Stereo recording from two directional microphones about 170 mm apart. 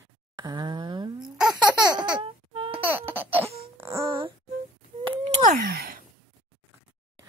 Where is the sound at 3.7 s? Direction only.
15° right (ahead or behind).